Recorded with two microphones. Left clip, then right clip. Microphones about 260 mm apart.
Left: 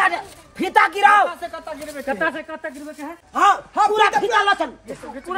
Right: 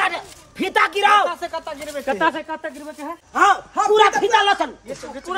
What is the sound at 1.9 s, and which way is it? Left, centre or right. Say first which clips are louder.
Speech: right 3 dB; right.